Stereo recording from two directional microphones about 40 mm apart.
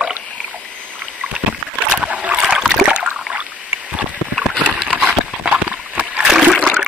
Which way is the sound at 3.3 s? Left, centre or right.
Right.